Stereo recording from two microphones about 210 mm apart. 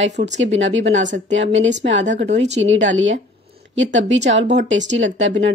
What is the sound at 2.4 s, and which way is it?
Speech, 60° right (ahead or behind).